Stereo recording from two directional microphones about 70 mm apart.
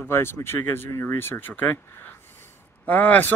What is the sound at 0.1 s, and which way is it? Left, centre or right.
Speech, left.